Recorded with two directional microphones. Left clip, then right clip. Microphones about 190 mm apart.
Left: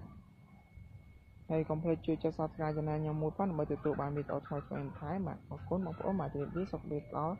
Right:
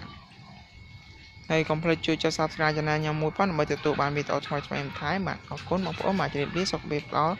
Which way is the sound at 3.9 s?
20° right (ahead or behind).